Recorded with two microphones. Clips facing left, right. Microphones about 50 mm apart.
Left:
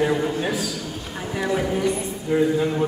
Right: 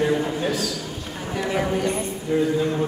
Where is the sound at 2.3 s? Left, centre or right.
Centre.